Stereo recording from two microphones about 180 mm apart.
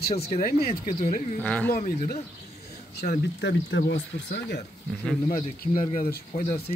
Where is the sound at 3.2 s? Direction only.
75° left (ahead or behind).